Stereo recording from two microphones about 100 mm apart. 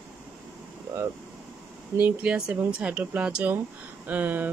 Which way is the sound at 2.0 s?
15° right (ahead or behind).